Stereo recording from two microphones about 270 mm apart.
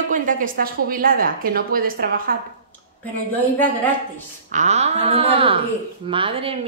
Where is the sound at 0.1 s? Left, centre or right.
Right.